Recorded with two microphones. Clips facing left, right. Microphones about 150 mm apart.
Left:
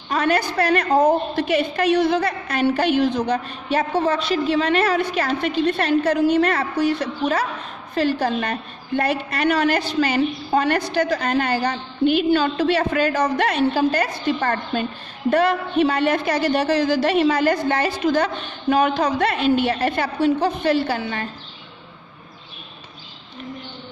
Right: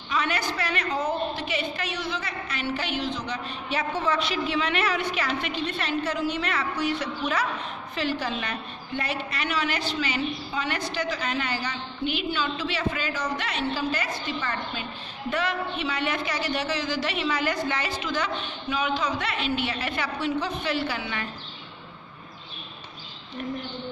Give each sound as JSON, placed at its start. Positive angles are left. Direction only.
{"t": 0.1, "sound": "a woman's voice", "side_deg": 40}
{"t": 0.9, "sound": "a woman's voice", "side_deg": 55}
{"t": 16.0, "sound": "a woman's voice", "side_deg": 40}
{"t": 16.3, "sound": "a woman's voice", "side_deg": 50}
{"t": 17.7, "sound": "a woman's voice", "side_deg": 55}